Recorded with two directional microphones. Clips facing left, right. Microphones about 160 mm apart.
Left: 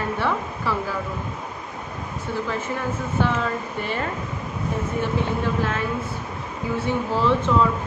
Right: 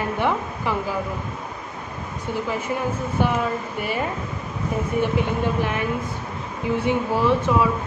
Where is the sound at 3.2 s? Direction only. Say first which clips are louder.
Right 1 dB; 15° right (ahead or behind).